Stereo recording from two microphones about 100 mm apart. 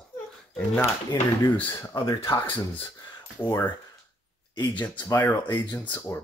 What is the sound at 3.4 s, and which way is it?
Speech, 20° left (ahead or behind).